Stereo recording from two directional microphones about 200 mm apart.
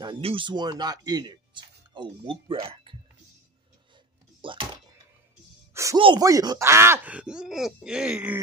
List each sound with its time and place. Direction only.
0.0 s speech: 25° right (ahead or behind)
4.4 s speech: 25° right (ahead or behind)
5.7 s music: 15° right (ahead or behind)
5.9 s speech: 25° right (ahead or behind); by 8.4 s 5° right (ahead or behind)